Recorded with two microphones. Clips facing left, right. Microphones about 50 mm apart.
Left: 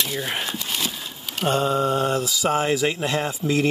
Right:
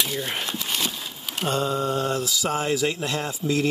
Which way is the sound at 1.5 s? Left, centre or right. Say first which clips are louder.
Left 4 dB; left.